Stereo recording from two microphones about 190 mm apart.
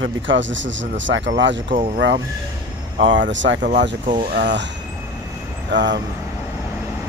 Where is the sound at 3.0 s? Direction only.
75° right (ahead or behind).